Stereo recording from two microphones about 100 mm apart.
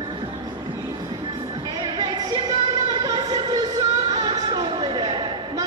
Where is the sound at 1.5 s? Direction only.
50° right (ahead or behind).